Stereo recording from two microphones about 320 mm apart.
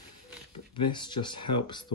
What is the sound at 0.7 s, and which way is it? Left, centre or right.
Speech, centre.